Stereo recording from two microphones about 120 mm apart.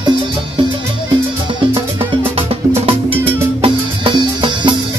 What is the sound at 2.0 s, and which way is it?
Music, 50° right (ahead or behind).